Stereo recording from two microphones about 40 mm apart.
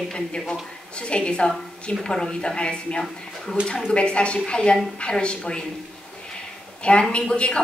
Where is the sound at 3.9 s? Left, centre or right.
Left.